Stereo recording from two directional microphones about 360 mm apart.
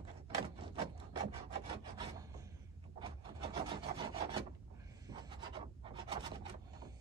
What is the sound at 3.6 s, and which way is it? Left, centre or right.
Rub, centre.